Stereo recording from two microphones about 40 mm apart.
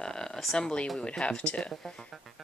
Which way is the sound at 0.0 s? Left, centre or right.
Centre.